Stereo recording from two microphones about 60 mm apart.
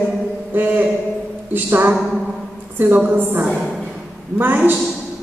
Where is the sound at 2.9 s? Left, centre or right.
Right.